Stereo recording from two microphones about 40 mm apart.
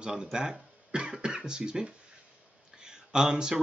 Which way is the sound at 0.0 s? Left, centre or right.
Centre.